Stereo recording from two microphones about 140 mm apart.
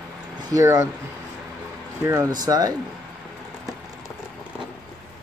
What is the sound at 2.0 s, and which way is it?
Speech, 20° right (ahead or behind).